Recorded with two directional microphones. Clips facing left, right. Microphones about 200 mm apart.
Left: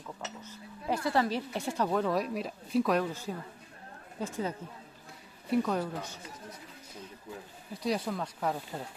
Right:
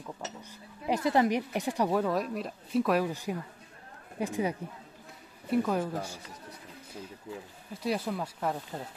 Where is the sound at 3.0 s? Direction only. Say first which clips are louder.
Right 3 dB; 15° right (ahead or behind).